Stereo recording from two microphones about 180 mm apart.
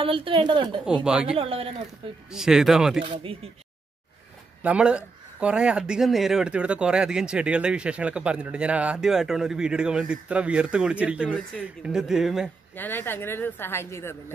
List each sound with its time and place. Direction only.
0.0 s a woman's voice: 30° right (ahead or behind)
0.8 s speech: 5° right (ahead or behind)
1.3 s speech: 30° right (ahead or behind)
2.3 s speech: 5° right (ahead or behind)
4.6 s speech: 5° right (ahead or behind)
12.7 s a woman's voice: 10° left (ahead or behind)